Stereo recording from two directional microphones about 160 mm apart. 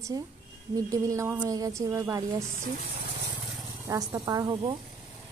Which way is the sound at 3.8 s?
20° right (ahead or behind).